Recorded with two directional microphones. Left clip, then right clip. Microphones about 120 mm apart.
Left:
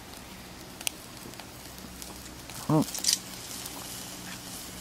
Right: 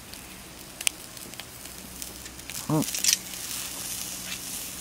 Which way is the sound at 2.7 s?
5° right (ahead or behind).